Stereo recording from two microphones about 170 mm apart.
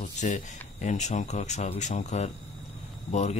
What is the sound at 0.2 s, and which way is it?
Speech, 45° left (ahead or behind).